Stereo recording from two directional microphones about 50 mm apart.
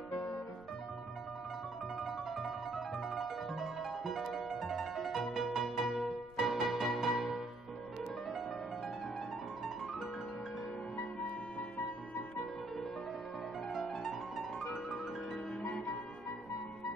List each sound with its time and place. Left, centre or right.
0.1 s music: centre
2.0 s music: centre
5.5 s music: centre
15.6 s music: left